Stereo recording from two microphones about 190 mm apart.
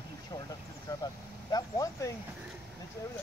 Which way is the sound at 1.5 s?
15° left (ahead or behind).